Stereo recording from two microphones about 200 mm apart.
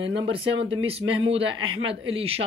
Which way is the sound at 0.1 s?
25° right (ahead or behind).